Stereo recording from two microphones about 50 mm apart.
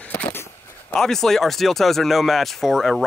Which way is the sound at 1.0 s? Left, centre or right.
Centre.